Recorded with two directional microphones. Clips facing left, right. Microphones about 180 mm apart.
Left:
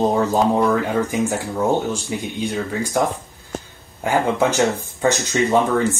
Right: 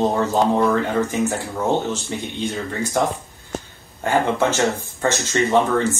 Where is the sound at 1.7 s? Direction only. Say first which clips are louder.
Even; 10° left (ahead or behind).